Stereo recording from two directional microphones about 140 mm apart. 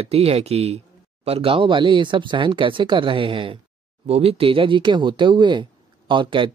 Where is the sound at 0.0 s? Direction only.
45° right (ahead or behind).